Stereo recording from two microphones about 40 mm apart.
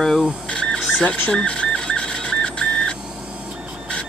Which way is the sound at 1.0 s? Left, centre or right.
Left.